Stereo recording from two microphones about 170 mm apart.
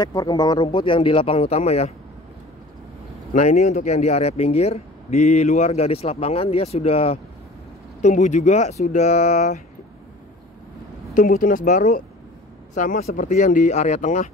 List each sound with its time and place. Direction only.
0.0 s a man's voice: 20° left (ahead or behind)
3.3 s a man's voice: 45° left (ahead or behind)
11.1 s speech: 55° left (ahead or behind)